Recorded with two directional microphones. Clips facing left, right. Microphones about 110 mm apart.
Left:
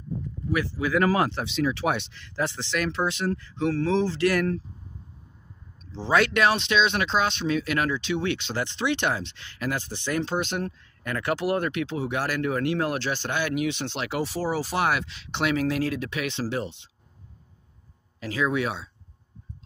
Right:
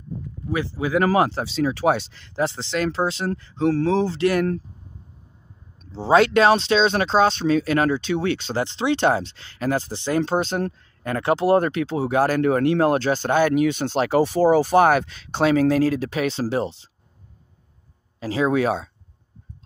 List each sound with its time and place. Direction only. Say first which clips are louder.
0.5 s speech: right 2 dB; 25° right (ahead or behind)
5.9 s speech: right 6 dB; 30° right (ahead or behind)
12.4 s speech: right 7 dB; 45° right (ahead or behind)
18.2 s speech: right 6 dB; 30° right (ahead or behind)